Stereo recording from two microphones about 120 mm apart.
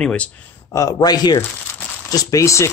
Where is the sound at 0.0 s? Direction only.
10° left (ahead or behind).